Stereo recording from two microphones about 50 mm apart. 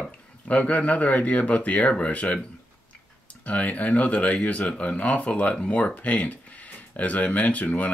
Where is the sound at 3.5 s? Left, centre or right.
Left.